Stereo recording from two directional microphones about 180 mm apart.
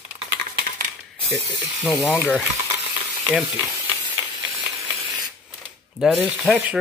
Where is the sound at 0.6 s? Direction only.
50° right (ahead or behind).